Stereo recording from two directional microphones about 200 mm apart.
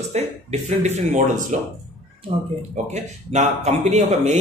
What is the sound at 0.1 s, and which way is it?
Speech, 35° right (ahead or behind).